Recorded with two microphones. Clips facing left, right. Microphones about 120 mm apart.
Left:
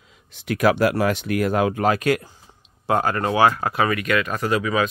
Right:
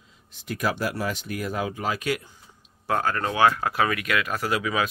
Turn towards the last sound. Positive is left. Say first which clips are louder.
# left 4 dB
turn(degrees=-5)  # may be behind; listen again after turning